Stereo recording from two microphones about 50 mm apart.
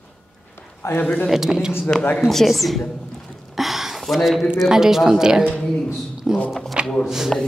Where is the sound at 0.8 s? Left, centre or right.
Left.